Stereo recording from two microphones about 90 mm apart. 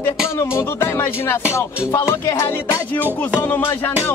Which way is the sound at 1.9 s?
30° left (ahead or behind).